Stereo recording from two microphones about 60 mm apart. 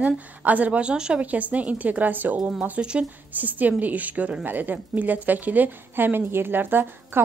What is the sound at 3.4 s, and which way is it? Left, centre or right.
A woman's voice, right.